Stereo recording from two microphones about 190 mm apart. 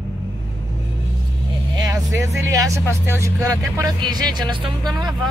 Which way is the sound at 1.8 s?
15° right (ahead or behind).